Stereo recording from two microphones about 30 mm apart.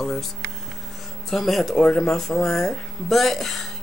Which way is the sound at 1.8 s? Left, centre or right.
Left.